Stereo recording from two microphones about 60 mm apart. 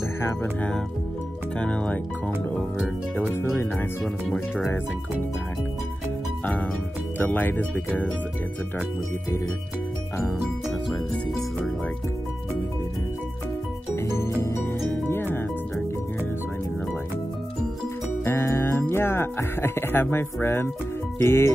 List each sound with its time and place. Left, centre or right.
0.2 s speech: left
0.6 s speech: centre
6.4 s speech: left
13.9 s music: left
14.9 s music: left
18.2 s music: left
21.2 s speech: left